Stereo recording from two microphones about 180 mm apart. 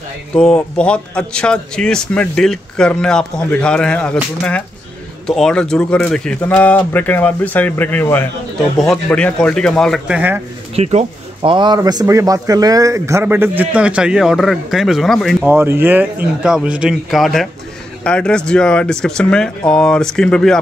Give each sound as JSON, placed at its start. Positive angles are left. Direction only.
{"t": 0.3, "sound": "a man's voice", "side_deg": 5}
{"t": 10.8, "sound": "speech", "side_deg": -35}
{"t": 15.4, "sound": "a man's voice", "side_deg": -10}